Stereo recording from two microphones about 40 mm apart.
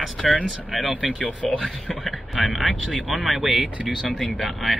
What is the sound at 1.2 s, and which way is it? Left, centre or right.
Speech, left.